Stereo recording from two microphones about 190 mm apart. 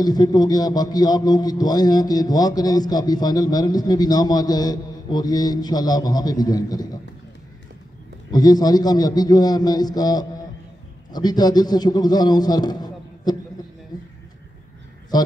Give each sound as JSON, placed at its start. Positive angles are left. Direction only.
{"t": 0.0, "sound": "a man's voice", "side_deg": 20}
{"t": 8.3, "sound": "a man's voice", "side_deg": 20}
{"t": 13.9, "sound": "a sound", "side_deg": 20}
{"t": 15.1, "sound": "a man's voice", "side_deg": 20}